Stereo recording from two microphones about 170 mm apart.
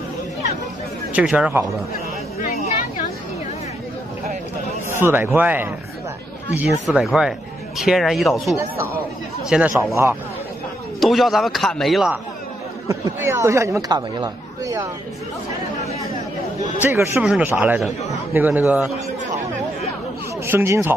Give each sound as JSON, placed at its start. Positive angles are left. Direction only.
{"t": 1.1, "sound": "a man's voice", "side_deg": -5}
{"t": 2.4, "sound": "a sound", "side_deg": 40}
{"t": 4.8, "sound": "a man's voice", "side_deg": -15}
{"t": 11.0, "sound": "speech", "side_deg": 0}
{"t": 12.8, "sound": "speech", "side_deg": -15}
{"t": 16.8, "sound": "a man's voice", "side_deg": -15}
{"t": 20.4, "sound": "a man's voice", "side_deg": -15}